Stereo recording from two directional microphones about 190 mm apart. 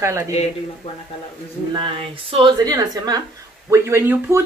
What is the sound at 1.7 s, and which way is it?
A woman's voice, 25° right (ahead or behind).